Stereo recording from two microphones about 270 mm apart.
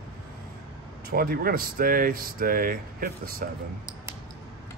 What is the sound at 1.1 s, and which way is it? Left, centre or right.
Speech, right.